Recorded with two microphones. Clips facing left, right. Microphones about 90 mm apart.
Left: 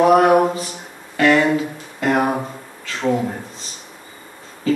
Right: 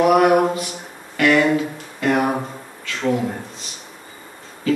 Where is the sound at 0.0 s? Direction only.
30° left (ahead or behind).